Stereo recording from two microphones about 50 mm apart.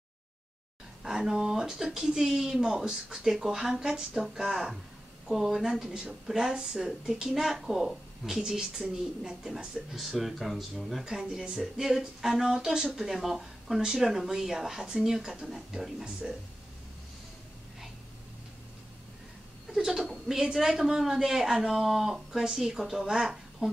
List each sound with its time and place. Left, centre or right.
1.0 s a woman's voice: centre
19.8 s a woman's voice: centre